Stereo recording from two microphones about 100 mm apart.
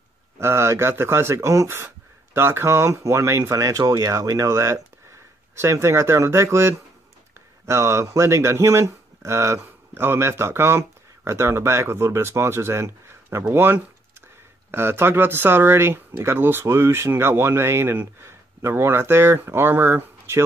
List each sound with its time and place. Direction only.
0.4 s speech: 25° right (ahead or behind)